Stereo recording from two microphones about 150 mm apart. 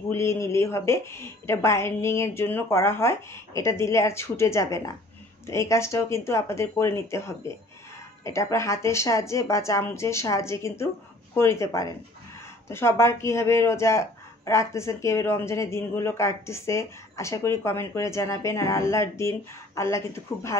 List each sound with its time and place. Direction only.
0.1 s a woman's voice: 20° left (ahead or behind)